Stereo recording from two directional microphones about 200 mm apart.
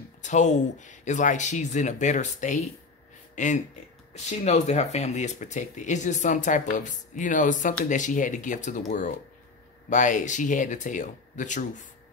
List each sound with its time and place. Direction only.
0.2 s speech: 35° left (ahead or behind)